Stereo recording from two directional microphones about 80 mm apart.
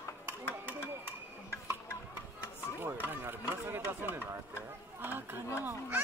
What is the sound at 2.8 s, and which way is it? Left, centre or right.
Speech, right.